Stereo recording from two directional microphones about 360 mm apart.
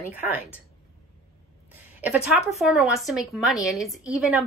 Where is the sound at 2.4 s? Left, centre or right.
Centre.